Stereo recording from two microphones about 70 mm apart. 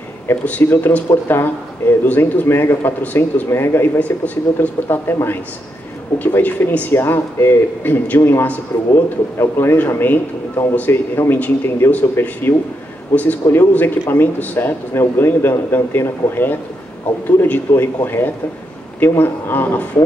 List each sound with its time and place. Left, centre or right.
0.3 s a man's voice: left
3.4 s a man's voice: left